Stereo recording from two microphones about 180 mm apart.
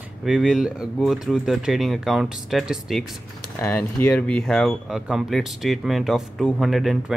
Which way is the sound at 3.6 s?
10° left (ahead or behind).